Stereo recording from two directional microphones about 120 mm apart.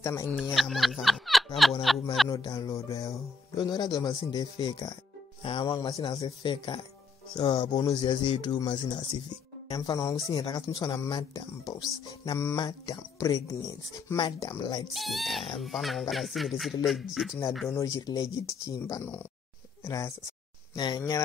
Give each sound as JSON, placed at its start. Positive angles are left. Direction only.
{"t": 0.0, "sound": "speech", "side_deg": 25}
{"t": 0.6, "sound": "speech", "side_deg": 0}
{"t": 2.2, "sound": "speech", "side_deg": 30}
{"t": 5.4, "sound": "speech", "side_deg": 45}
{"t": 5.9, "sound": "speech", "side_deg": 30}
{"t": 12.3, "sound": "speech", "side_deg": 20}
{"t": 14.1, "sound": "speech", "side_deg": 35}
{"t": 15.0, "sound": "speech", "side_deg": 0}
{"t": 17.7, "sound": "speech", "side_deg": 30}
{"t": 19.8, "sound": "speech", "side_deg": 25}